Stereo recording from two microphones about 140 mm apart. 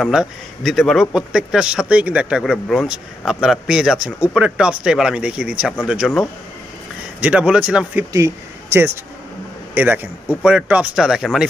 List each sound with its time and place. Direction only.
0.0 s speech: centre (ahead or behind)
8.1 s speech: 20° right (ahead or behind); by 11.4 s 5° right (ahead or behind)